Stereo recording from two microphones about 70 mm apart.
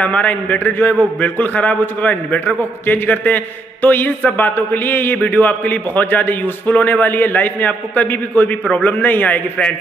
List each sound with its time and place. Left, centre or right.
0.0 s a man's voice: left